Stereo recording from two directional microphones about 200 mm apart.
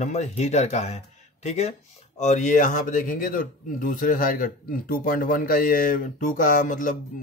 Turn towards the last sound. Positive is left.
turn(degrees=40)  # may be behind; listen again after turning